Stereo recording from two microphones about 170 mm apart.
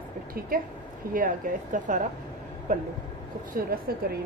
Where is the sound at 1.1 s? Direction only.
50° right (ahead or behind).